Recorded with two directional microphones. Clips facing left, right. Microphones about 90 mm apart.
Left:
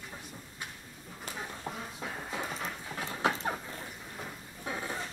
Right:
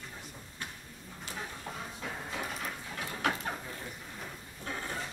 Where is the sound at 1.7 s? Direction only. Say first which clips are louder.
Left 5 dB; 20° left (ahead or behind).